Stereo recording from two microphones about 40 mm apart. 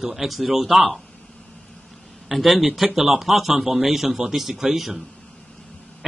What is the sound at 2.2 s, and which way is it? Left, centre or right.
Speech, centre.